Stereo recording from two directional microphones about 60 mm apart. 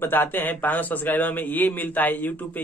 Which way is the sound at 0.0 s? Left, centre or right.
Left.